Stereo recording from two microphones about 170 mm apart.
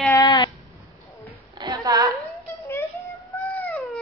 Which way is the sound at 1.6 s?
20° right (ahead or behind).